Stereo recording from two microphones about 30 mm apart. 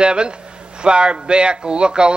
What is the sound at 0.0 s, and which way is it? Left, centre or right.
Speech, right.